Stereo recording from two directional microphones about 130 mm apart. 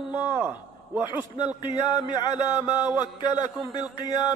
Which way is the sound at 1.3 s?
35° left (ahead or behind).